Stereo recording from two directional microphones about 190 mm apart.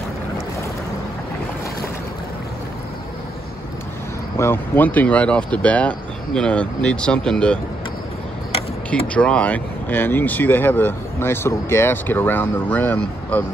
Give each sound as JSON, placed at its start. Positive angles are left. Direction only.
{"t": 4.4, "sound": "speech", "side_deg": 10}
{"t": 9.0, "sound": "speech", "side_deg": 5}